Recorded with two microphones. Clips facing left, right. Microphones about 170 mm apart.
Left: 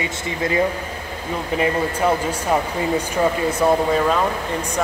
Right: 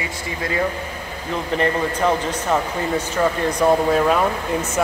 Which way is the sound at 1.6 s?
10° left (ahead or behind).